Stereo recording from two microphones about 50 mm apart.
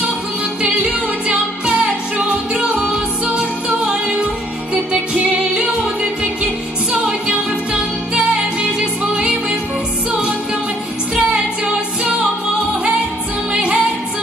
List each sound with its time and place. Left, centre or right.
1.2 s music: right
3.3 s music: right
5.1 s music: right
6.9 s music: right
13.5 s music: centre